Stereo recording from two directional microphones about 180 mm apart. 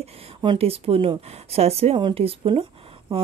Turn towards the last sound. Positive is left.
turn(degrees=-30)  # may be behind; listen again after turning